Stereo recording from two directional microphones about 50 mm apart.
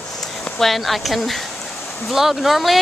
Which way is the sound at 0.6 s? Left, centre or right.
Centre.